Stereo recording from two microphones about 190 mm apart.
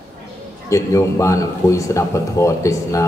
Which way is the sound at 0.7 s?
15° left (ahead or behind).